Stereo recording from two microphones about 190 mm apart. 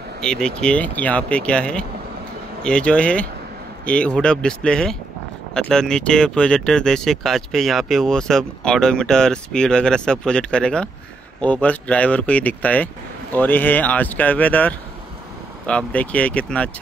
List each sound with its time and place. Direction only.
0.2 s speech: 5° left (ahead or behind)